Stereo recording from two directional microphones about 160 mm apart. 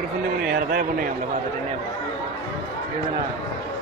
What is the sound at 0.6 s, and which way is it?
Speech, 65° right (ahead or behind).